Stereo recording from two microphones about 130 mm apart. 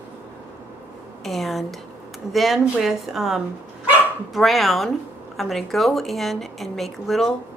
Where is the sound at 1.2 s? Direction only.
Centre (ahead or behind).